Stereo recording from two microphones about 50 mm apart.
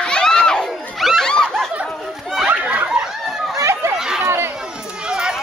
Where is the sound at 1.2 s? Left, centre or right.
Centre.